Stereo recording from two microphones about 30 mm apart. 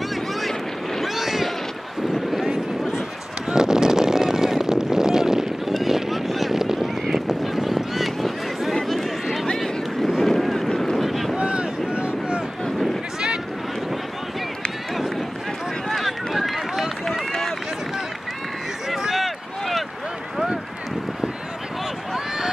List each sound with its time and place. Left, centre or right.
1.0 s boat: centre
3.5 s a sound: centre
5.9 s vehicle: centre
6.8 s honk: centre
8.7 s a sound: centre
9.6 s boat: centre
11.3 s boat: right
11.9 s vehicle: right
15.9 s run: centre
18.9 s a sound: centre